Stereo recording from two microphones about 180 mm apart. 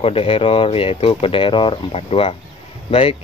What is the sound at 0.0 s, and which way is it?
Speech, 30° left (ahead or behind).